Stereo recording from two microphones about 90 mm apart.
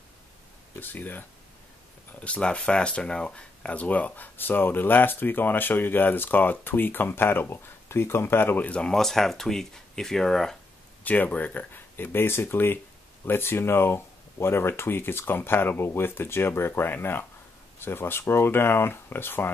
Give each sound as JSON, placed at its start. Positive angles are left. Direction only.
{"t": 0.7, "sound": "speech", "side_deg": 20}
{"t": 11.1, "sound": "speech", "side_deg": 15}